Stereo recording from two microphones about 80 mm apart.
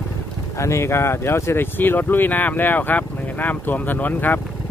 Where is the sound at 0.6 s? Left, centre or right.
Left.